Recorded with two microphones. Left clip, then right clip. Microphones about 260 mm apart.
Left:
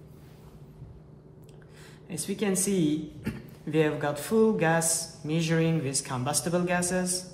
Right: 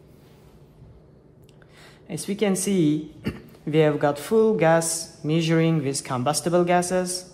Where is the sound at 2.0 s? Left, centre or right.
Right.